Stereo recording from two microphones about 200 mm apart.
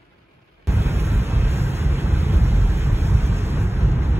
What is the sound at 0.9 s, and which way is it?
Vehicle, 30° right (ahead or behind).